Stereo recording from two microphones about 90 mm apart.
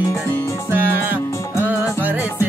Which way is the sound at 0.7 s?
25° right (ahead or behind).